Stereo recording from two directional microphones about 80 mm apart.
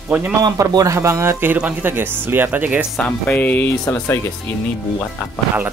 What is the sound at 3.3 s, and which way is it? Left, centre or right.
Speech, left.